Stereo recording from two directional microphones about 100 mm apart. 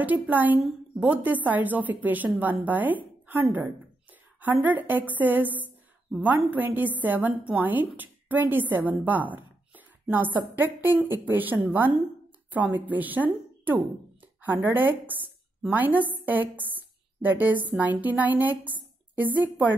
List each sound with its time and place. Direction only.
0.0 s a woman's voice: 15° right (ahead or behind)